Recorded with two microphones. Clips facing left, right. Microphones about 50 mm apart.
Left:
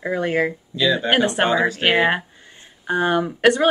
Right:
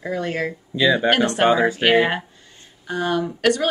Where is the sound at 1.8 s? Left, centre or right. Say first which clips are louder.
Right 1 dB; centre.